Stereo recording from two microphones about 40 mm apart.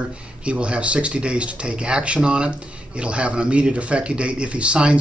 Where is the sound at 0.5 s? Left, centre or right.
Right.